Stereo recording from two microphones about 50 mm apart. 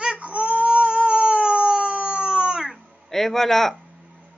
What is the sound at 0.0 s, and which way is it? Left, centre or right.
Baby cry, right.